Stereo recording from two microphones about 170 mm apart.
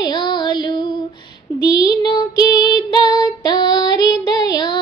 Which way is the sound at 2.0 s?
20° left (ahead or behind).